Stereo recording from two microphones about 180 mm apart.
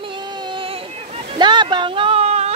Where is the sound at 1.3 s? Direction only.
25° right (ahead or behind).